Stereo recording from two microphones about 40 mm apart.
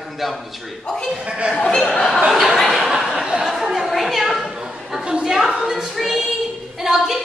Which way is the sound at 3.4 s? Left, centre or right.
Centre.